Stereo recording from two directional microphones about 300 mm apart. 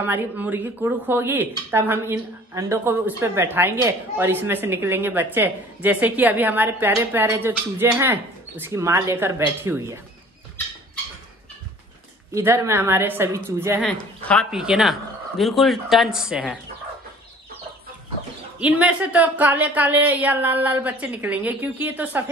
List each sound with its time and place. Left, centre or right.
0.0 s speech: centre
12.4 s speech: centre
18.6 s speech: centre